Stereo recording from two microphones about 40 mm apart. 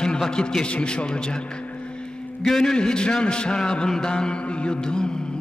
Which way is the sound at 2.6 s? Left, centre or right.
Centre.